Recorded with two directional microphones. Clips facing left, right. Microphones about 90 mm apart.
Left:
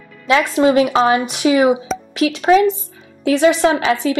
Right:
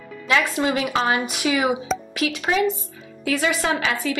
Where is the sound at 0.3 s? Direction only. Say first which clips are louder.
Left 7 dB; 30° left (ahead or behind).